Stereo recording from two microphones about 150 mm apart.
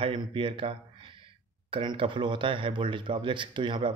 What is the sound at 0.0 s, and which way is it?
Speech, 35° right (ahead or behind).